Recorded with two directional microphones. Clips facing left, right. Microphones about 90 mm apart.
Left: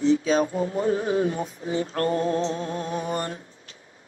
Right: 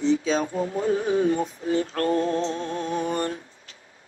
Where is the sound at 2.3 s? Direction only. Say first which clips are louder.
Even; 10° left (ahead or behind).